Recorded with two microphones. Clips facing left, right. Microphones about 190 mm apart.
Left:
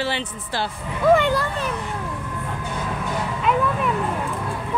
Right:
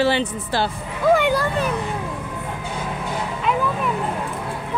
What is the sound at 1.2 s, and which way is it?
Speech, 10° right (ahead or behind).